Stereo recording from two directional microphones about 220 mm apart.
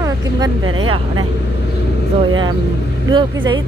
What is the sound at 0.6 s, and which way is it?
Speech, 70° right (ahead or behind).